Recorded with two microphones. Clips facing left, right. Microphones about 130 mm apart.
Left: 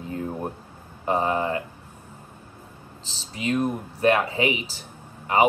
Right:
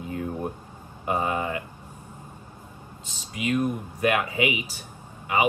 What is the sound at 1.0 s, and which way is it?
Speech, 35° left (ahead or behind).